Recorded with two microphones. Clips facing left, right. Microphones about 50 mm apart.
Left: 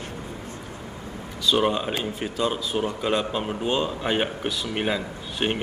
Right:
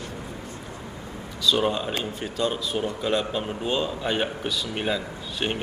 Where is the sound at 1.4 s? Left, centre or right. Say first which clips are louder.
Left 1 dB; centre.